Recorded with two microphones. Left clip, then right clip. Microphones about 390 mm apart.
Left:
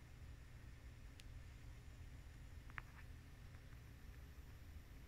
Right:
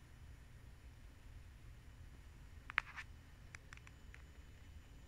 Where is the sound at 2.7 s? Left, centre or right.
Right.